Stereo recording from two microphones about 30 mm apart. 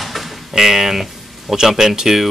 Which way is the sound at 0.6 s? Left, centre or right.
Centre.